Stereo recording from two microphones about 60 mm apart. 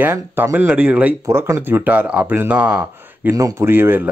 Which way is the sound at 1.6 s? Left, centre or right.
Right.